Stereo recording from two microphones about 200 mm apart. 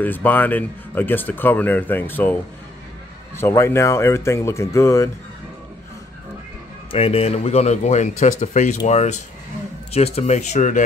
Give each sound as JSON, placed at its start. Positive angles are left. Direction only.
{"t": 0.0, "sound": "speech", "side_deg": 10}
{"t": 3.3, "sound": "speech", "side_deg": 10}
{"t": 6.9, "sound": "speech", "side_deg": 30}